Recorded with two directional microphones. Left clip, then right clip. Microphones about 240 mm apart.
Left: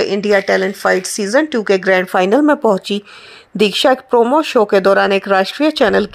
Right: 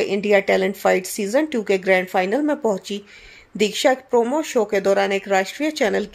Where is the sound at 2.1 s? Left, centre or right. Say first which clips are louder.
Left 8 dB; left.